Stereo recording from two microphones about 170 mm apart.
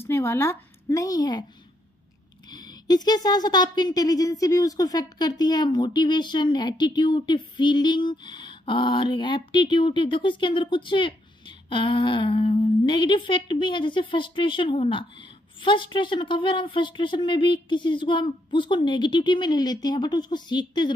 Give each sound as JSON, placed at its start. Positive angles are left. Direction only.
{"t": 0.0, "sound": "speech", "side_deg": 15}
{"t": 2.5, "sound": "speech", "side_deg": 25}